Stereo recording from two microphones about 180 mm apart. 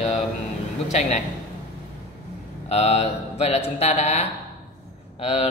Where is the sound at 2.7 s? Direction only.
40° left (ahead or behind).